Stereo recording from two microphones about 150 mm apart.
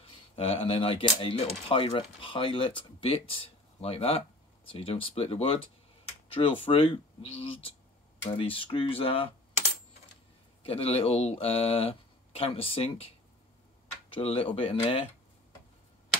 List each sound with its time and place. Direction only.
0.4 s speech: 40° left (ahead or behind)
10.6 s speech: 40° left (ahead or behind)